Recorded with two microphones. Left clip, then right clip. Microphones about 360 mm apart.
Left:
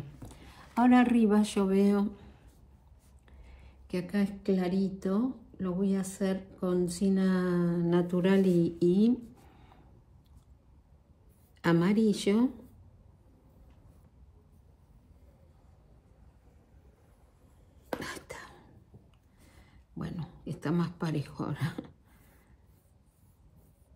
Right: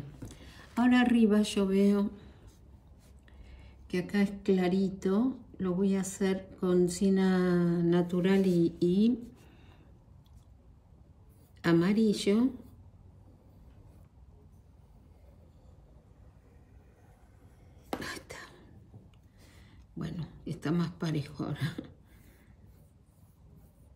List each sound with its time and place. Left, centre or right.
0.2 s speech: centre
3.4 s speech: centre
11.6 s speech: centre
17.8 s a sound: centre
20.0 s speech: centre